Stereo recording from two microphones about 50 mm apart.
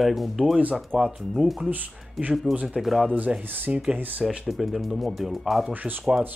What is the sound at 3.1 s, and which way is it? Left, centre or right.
Speech, right.